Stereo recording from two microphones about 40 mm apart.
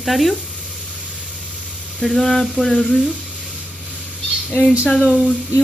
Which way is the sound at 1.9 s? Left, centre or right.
Centre.